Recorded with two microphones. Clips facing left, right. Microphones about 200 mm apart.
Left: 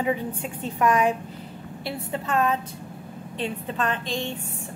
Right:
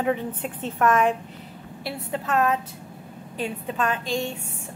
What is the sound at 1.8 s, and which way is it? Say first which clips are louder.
Speech: right 1 dB; centre (ahead or behind).